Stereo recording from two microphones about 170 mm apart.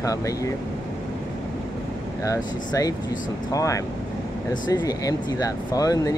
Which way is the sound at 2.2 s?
20° left (ahead or behind).